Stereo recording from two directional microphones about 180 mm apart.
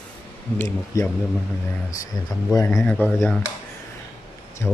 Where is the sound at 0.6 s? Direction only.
15° left (ahead or behind).